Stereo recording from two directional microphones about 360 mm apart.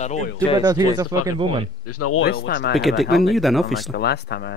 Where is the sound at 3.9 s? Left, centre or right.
Left.